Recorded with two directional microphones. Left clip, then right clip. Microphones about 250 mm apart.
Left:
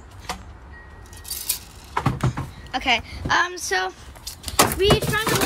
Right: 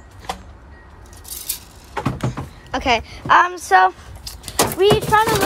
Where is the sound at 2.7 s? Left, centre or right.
Right.